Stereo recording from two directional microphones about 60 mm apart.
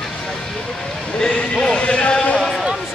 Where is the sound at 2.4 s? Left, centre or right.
Centre.